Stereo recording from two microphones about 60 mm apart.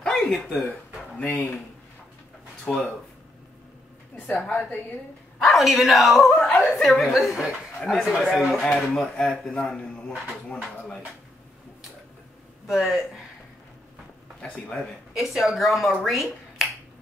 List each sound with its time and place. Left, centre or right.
0.0 s a sound: centre
0.3 s a man's voice: centre
1.1 s speech: left
2.7 s speech: centre
4.3 s a woman's voice: left
5.4 s speech: centre
9.5 s a man's voice: centre
12.6 s speech: centre
14.4 s a man's voice: centre
15.1 s speech: centre